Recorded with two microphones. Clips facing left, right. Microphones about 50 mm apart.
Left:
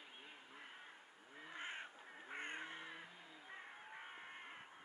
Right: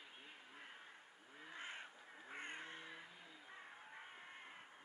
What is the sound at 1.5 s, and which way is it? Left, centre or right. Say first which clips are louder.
Crow: left 3 dB; left.